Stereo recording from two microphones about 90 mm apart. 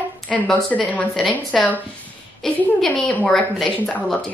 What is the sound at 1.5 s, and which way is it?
Speech, centre (ahead or behind).